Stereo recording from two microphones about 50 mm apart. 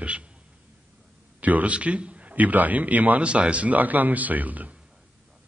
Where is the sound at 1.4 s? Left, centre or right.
Right.